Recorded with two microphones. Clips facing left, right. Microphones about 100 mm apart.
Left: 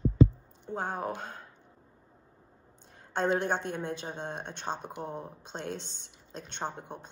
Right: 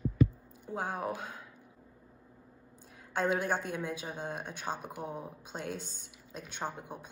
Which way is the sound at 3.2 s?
5° right (ahead or behind).